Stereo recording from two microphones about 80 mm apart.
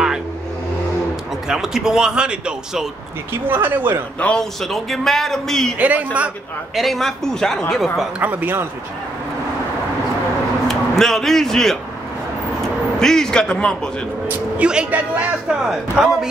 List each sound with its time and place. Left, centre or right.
1.5 s speech: centre
3.4 s speech: right
4.2 s speech: centre
4.6 s a man's voice: centre
5.8 s speech: centre
6.7 s a man's voice: centre
8.2 s speech: right
10.7 s a man's voice: centre
14.2 s speech: centre
15.6 s speech: centre